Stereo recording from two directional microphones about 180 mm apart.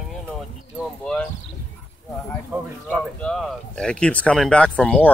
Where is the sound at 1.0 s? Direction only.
5° left (ahead or behind).